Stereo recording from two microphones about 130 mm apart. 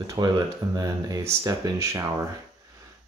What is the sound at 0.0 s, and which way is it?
Speech, 30° right (ahead or behind).